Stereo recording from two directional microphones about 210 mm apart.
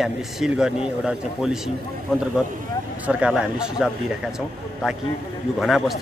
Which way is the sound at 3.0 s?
5° right (ahead or behind).